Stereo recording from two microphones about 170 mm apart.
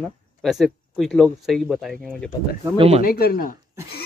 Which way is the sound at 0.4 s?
Centre (ahead or behind).